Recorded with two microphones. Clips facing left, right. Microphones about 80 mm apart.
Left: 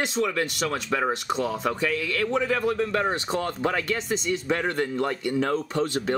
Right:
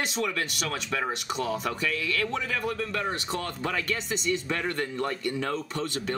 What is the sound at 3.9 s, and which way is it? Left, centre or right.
Speech, centre.